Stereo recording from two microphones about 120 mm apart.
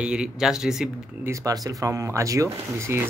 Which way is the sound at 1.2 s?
25° right (ahead or behind).